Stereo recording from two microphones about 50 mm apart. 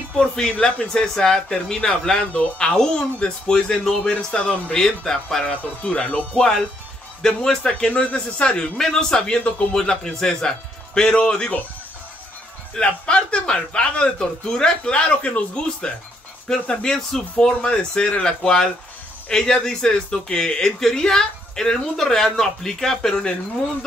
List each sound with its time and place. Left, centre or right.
0.2 s speech: centre
5.5 s speech: left
6.3 s speech: centre
7.9 s speech: left
12.7 s speech: centre